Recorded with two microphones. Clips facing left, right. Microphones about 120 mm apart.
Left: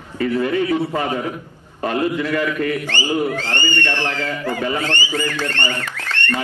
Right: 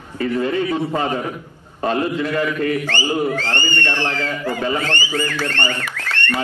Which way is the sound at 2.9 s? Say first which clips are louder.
Even; 15° left (ahead or behind).